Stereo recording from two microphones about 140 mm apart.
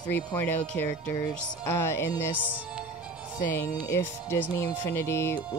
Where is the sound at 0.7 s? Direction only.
20° left (ahead or behind).